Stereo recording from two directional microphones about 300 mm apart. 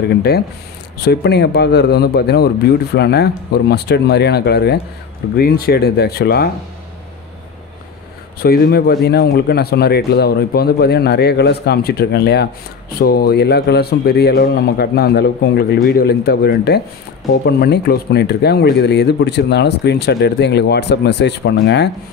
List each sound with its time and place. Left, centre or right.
0.1 s speech: left
8.4 s speech: left